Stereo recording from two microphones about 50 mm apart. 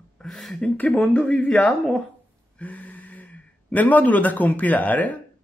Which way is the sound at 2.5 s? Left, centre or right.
Left.